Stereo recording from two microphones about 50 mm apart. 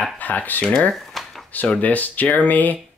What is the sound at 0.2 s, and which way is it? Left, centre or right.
Speech, left.